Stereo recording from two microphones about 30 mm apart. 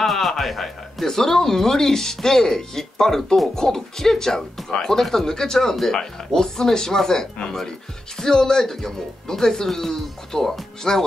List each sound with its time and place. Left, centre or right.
0.0 s a man's voice: centre
1.0 s speech: centre